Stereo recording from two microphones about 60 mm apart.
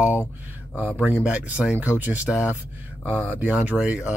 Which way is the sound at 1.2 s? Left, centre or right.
Right.